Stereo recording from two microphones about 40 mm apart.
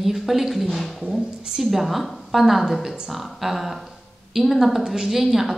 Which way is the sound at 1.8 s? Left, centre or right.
Centre.